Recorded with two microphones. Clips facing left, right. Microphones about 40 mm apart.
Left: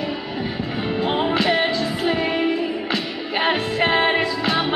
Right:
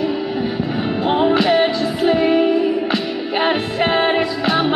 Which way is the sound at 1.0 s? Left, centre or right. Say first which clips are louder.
Right 5 dB; centre.